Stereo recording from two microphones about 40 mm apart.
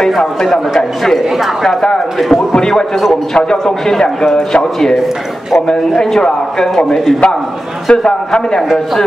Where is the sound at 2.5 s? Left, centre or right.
Centre.